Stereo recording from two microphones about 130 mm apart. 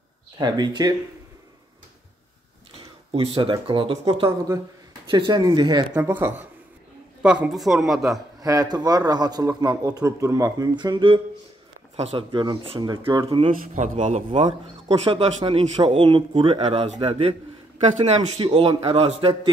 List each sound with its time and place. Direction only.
0.4 s speech: 30° right (ahead or behind)
3.1 s speech: 45° right (ahead or behind)
5.1 s speech: 35° right (ahead or behind)
5.9 s a man's voice: 20° right (ahead or behind); by 8.2 s centre (ahead or behind)
8.4 s a man's voice: 30° right (ahead or behind)
10.7 s speech: 35° right (ahead or behind)
13.7 s a man's voice: 65° right (ahead or behind)
15.0 s speech: 45° right (ahead or behind)